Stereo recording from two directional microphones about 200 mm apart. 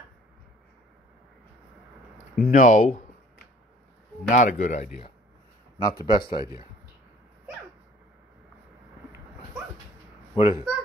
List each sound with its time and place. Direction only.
2.3 s speech: 45° left (ahead or behind)
4.3 s speech: 40° left (ahead or behind)
5.8 s a man's voice: 20° left (ahead or behind)
6.4 s speech: 20° right (ahead or behind)
10.3 s speech: 25° left (ahead or behind)